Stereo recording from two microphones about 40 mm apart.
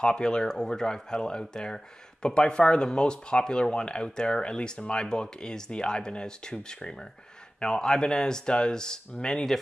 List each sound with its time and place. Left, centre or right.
0.0 s speech: left